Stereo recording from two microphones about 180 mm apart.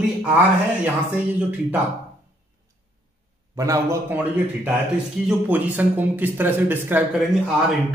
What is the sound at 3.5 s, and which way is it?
Speech, 20° right (ahead or behind).